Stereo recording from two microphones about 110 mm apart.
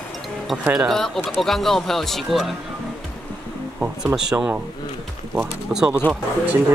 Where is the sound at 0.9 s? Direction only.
5° left (ahead or behind).